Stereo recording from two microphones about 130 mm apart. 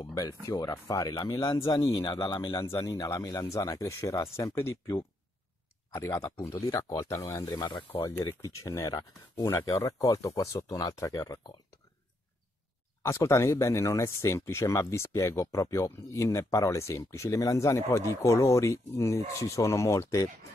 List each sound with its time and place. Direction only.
0.1 s speech: 25° left (ahead or behind)
2.6 s speech: 20° left (ahead or behind)
5.9 s speech: 20° left (ahead or behind)
8.4 s speech: 25° left (ahead or behind)
13.0 s speech: 20° left (ahead or behind)